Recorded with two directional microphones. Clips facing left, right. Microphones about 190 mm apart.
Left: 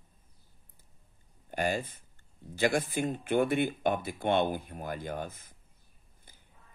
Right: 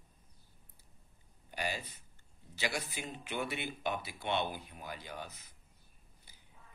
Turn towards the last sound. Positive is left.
turn(degrees=50)  # may be behind; listen again after turning